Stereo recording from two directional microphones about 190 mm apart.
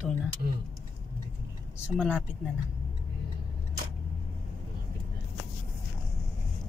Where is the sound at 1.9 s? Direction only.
5° left (ahead or behind).